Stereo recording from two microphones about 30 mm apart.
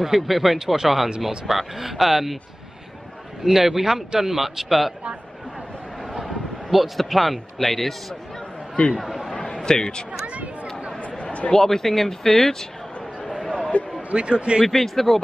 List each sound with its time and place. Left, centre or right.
0.0 s a man's voice: centre
3.4 s a man's voice: centre
6.2 s speech: centre
8.9 s speech: centre
9.3 s a sound: left
9.6 s speech: left
11.2 s a sound: left
11.5 s speech: centre
13.7 s speech: left
14.1 s speech: right
14.7 s speech: centre